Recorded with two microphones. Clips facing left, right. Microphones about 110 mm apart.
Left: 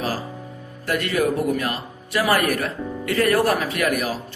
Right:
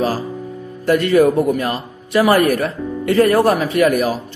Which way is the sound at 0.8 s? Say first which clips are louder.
Right 9 dB; 30° right (ahead or behind).